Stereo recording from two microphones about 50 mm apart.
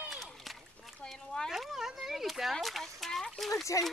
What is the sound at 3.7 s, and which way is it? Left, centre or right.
Speech, left.